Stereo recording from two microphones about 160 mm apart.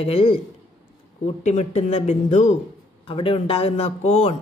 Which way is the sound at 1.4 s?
45° left (ahead or behind).